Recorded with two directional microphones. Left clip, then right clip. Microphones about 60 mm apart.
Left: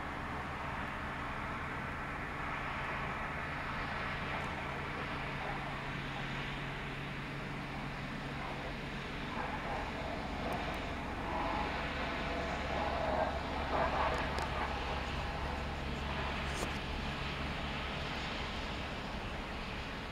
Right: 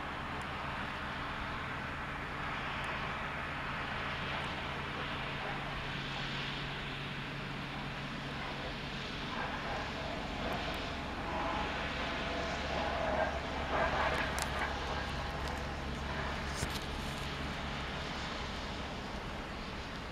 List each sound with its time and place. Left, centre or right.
11.3 s vehicle: right
12.7 s vehicle: right